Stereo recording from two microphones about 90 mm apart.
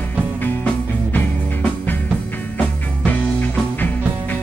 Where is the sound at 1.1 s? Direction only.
20° left (ahead or behind).